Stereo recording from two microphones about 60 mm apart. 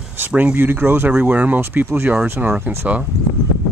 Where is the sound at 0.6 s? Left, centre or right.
Right.